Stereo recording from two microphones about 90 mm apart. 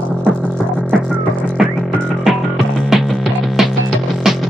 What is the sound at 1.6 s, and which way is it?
Music, 5° right (ahead or behind).